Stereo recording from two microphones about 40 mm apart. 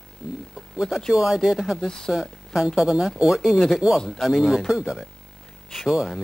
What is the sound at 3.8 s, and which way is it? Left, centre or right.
Speech, right.